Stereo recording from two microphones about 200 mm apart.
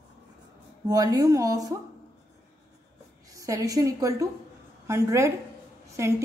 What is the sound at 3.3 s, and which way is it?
A woman's voice, 15° right (ahead or behind).